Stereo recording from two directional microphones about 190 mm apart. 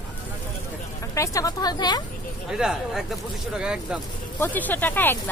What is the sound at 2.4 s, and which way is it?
Speech, 5° right (ahead or behind).